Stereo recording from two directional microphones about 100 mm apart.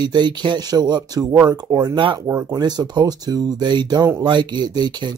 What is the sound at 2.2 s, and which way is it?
Speech, 25° right (ahead or behind).